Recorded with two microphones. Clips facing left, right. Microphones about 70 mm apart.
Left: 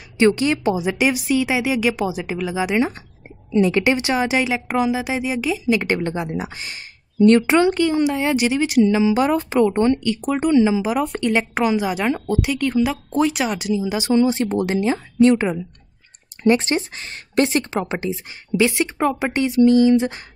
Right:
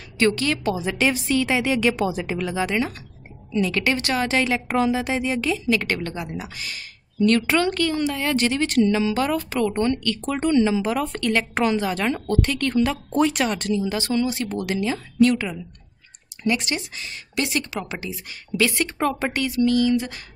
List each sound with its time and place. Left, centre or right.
0.2 s speech: left
3.5 s a woman's voice: left
19.3 s a woman's voice: left